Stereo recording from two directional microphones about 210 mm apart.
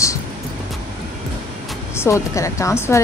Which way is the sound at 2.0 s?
15° left (ahead or behind).